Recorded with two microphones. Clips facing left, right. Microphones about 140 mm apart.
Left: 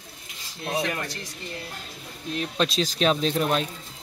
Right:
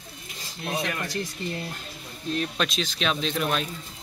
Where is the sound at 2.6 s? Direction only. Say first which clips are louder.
Left 4 dB; 35° left (ahead or behind).